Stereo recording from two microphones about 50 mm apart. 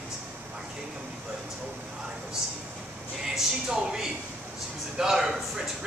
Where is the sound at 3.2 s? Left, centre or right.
Centre.